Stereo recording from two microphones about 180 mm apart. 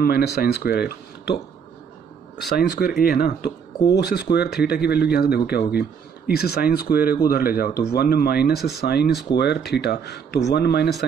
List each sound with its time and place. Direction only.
0.0 s speech: 60° left (ahead or behind)
2.5 s speech: 65° left (ahead or behind)